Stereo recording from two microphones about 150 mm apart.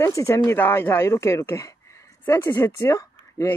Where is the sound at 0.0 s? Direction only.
20° left (ahead or behind).